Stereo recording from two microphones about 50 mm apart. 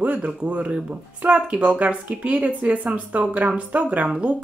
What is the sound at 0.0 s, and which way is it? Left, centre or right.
Speech, right.